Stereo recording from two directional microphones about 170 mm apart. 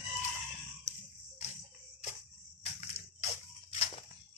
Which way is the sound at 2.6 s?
45° left (ahead or behind).